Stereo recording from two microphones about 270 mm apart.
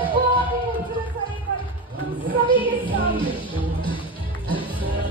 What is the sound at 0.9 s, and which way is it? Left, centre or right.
Music, centre.